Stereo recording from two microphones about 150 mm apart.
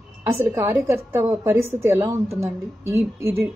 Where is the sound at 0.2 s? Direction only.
15° right (ahead or behind).